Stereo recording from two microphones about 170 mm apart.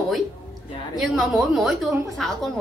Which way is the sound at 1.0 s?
Centre (ahead or behind).